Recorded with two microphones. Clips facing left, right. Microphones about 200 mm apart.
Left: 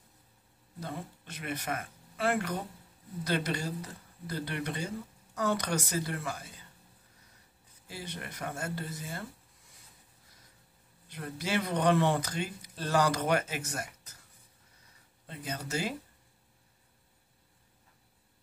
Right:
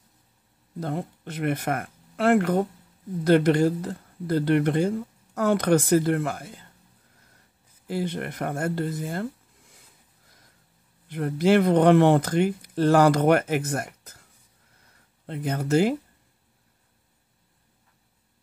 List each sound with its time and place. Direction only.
0.7 s speech: 55° right (ahead or behind)
3.3 s speech: 55° right (ahead or behind)
7.8 s speech: 60° right (ahead or behind)
11.1 s speech: 55° right (ahead or behind)
15.2 s speech: 60° right (ahead or behind)